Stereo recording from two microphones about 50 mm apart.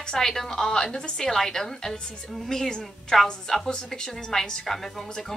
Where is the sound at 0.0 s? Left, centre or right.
Centre.